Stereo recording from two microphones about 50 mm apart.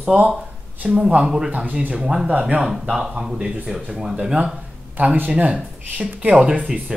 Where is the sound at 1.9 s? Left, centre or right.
Centre.